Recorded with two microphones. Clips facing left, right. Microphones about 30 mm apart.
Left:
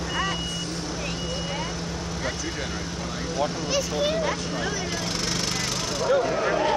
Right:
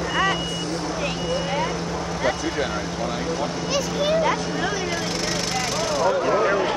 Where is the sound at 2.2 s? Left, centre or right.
Centre.